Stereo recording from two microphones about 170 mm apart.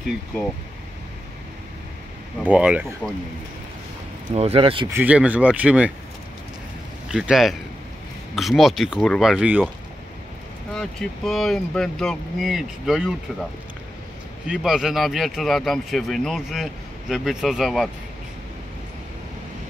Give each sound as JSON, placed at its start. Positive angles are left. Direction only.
{"t": 2.4, "sound": "speech", "side_deg": -10}
{"t": 4.4, "sound": "speech", "side_deg": -35}
{"t": 4.9, "sound": "speech", "side_deg": -10}
{"t": 7.1, "sound": "speech", "side_deg": -5}
{"t": 10.7, "sound": "speech", "side_deg": 0}
{"t": 14.5, "sound": "speech", "side_deg": -5}